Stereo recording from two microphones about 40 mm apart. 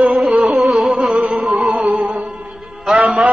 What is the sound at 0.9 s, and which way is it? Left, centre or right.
Music, centre.